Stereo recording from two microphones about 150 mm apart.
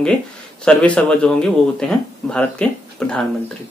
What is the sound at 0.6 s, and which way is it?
Speech, 10° left (ahead or behind).